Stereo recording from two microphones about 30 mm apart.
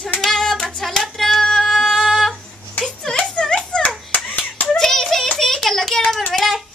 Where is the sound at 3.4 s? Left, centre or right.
Left.